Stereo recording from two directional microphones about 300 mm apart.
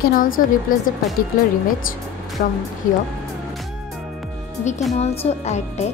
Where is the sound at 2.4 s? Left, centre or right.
Left.